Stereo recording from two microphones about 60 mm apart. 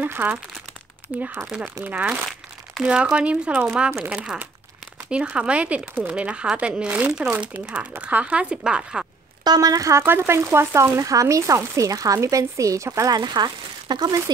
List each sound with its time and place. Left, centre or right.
0.0 s speech: right
1.9 s speech: right
2.8 s speech: centre
9.4 s a woman's voice: right
10.0 s speech: right
11.0 s speech: right
13.9 s a woman's voice: right